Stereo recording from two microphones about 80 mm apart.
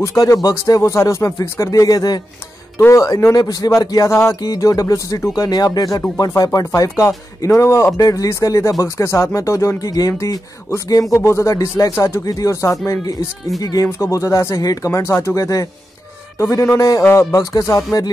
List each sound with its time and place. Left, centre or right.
0.0 s speech: left
3.3 s speech: left
4.1 s speech: left
4.4 s speech: left
10.1 s speech: left
11.1 s speech: left
14.9 s speech: left
17.1 s speech: left